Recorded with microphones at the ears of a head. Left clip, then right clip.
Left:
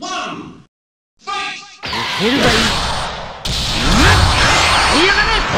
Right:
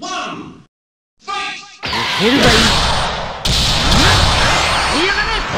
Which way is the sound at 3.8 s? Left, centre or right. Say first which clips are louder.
Left 2 dB; centre.